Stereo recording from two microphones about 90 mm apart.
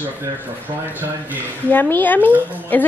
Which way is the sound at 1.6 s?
20° left (ahead or behind).